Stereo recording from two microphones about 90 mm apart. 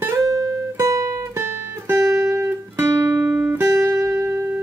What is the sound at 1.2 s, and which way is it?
Music, 25° right (ahead or behind).